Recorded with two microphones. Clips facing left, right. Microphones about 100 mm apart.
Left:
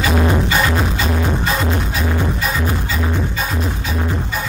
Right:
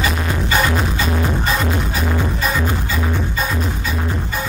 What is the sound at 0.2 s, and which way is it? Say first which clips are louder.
Music: left 2 dB; 20° left (ahead or behind).